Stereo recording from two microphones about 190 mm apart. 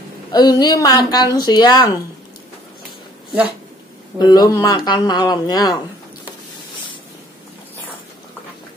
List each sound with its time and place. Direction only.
0.3 s speech: 20° left (ahead or behind)
4.2 s speech: 20° left (ahead or behind)